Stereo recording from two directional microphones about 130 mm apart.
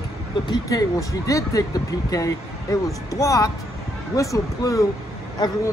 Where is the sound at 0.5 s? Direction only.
25° left (ahead or behind).